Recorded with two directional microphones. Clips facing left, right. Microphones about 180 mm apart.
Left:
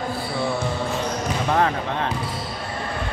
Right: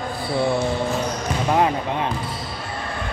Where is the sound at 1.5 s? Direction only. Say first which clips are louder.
Right 2 dB; 15° right (ahead or behind).